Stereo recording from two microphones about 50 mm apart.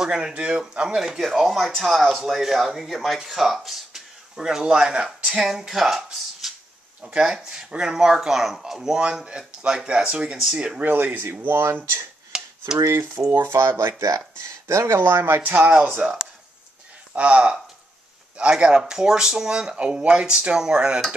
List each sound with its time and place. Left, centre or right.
0.0 s speech: centre
6.4 s a sound: centre
7.0 s speech: centre
10.3 s speech: centre
10.8 s speech: right
11.4 s speech: right
12.3 s a sound: centre
12.7 s speech: right
13.1 s speech: right
15.0 s speech: right
15.4 s speech: right
17.1 s speech: right